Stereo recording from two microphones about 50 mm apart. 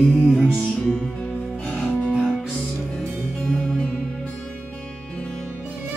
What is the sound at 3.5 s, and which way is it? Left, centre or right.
Music, centre.